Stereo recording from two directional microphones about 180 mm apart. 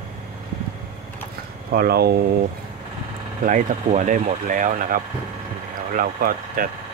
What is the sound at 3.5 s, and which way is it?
Speech, 45° right (ahead or behind).